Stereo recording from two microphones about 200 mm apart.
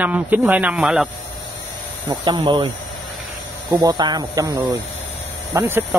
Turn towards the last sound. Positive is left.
turn(degrees=-10)  # may be behind; listen again after turning